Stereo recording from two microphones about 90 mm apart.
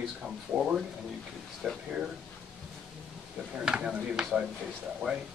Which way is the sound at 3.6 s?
10° right (ahead or behind).